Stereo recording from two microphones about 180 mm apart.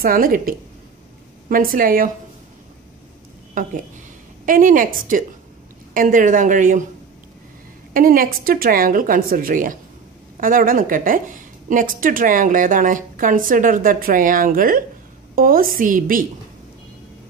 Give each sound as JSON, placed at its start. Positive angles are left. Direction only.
{"t": 0.0, "sound": "a woman's voice", "side_deg": -55}
{"t": 3.6, "sound": "a woman's voice", "side_deg": -45}
{"t": 7.9, "sound": "a woman's voice", "side_deg": -50}